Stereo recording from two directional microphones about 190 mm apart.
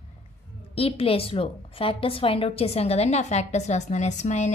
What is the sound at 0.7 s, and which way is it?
A woman's voice, 30° left (ahead or behind).